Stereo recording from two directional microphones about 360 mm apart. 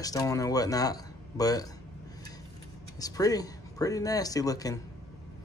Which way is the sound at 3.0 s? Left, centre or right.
Centre.